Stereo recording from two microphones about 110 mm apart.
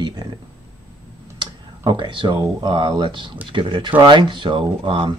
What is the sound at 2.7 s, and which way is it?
Speech, 50° right (ahead or behind).